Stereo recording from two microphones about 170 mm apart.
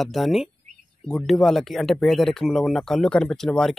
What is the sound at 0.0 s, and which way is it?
Speech, centre (ahead or behind).